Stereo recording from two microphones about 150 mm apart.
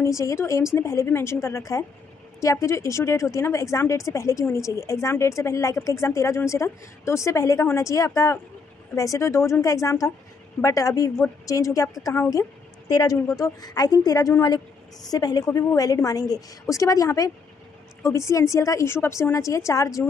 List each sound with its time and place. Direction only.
0.0 s a woman's voice: 20° left (ahead or behind)